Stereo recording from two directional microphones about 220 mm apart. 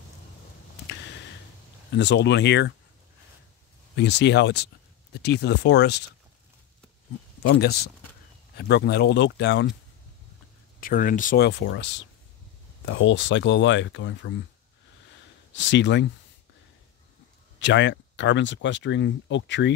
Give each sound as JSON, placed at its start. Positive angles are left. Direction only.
{"t": 1.9, "sound": "speech", "side_deg": 50}
{"t": 3.9, "sound": "speech", "side_deg": 50}
{"t": 7.4, "sound": "speech", "side_deg": 50}
{"t": 10.8, "sound": "speech", "side_deg": 40}
{"t": 15.5, "sound": "speech", "side_deg": 55}
{"t": 17.6, "sound": "speech", "side_deg": 55}